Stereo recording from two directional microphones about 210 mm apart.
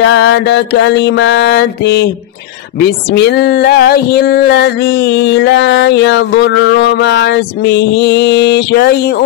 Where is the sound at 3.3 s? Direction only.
50° left (ahead or behind).